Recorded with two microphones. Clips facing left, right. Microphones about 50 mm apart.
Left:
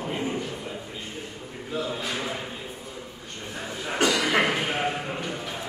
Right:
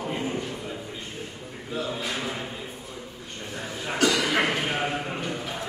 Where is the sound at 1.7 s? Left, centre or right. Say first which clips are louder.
Even; centre.